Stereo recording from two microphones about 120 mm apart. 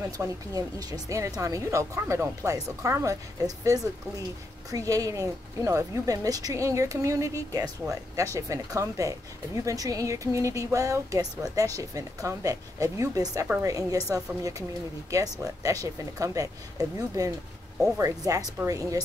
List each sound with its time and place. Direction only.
0.2 s speech: 30° right (ahead or behind)